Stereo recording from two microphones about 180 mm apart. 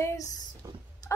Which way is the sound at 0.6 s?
15° right (ahead or behind).